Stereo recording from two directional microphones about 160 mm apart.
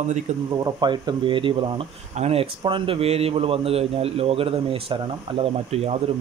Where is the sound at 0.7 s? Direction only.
25° right (ahead or behind).